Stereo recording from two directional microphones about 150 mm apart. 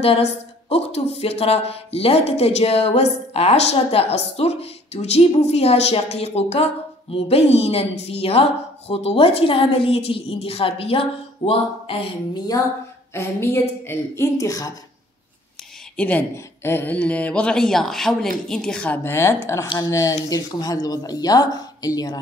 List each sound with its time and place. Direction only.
0.0 s speech: 45° left (ahead or behind)
13.1 s a woman's voice: 15° left (ahead or behind)
16.0 s a woman's voice: 10° left (ahead or behind)